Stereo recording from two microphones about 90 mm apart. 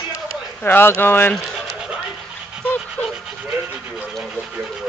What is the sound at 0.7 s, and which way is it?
Speech, 25° left (ahead or behind).